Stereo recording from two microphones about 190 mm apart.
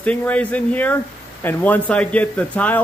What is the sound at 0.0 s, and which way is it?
A man's voice, 5° left (ahead or behind).